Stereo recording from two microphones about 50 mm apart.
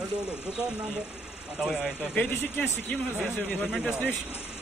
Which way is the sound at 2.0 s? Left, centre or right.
Left.